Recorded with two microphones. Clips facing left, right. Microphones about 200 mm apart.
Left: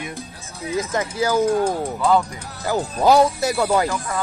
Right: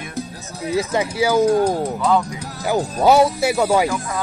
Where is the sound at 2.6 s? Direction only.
15° right (ahead or behind).